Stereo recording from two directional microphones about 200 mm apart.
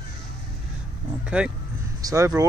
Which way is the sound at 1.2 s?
5° right (ahead or behind).